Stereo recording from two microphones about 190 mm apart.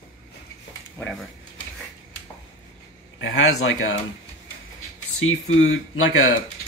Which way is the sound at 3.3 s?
90° left.